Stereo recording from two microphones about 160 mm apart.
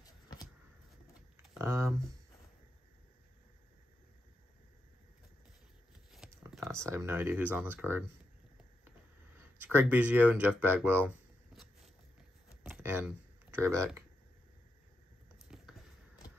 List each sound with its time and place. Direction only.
0.0 s vehicle: 25° left (ahead or behind)
1.6 s speech: 15° right (ahead or behind)
6.2 s a sound: 5° right (ahead or behind)
6.6 s speech: 15° right (ahead or behind)
9.6 s speech: 15° right (ahead or behind)
12.6 s typing: 10° right (ahead or behind)
15.3 s a sound: 5° right (ahead or behind)